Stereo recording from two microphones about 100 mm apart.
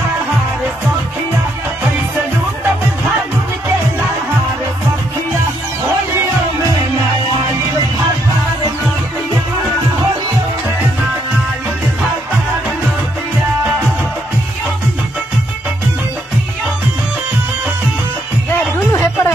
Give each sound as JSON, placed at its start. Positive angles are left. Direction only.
{"t": 18.8, "sound": "music", "side_deg": 20}